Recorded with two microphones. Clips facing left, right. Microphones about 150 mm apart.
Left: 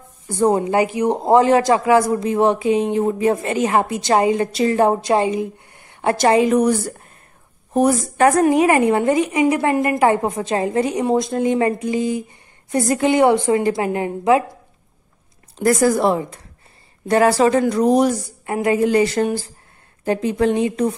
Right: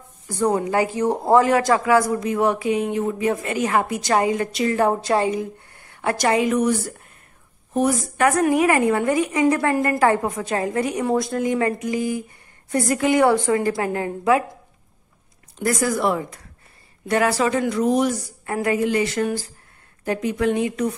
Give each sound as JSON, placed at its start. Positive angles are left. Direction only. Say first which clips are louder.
{"t": 0.3, "sound": "a man's voice", "louder": "left 4 dB", "side_deg": 25}
{"t": 15.6, "sound": "speech", "louder": "left 5 dB", "side_deg": 40}
{"t": 18.4, "sound": "a woman's voice", "louder": "left 3 dB", "side_deg": 20}
{"t": 18.8, "sound": "a man's voice", "louder": "left 5 dB", "side_deg": 35}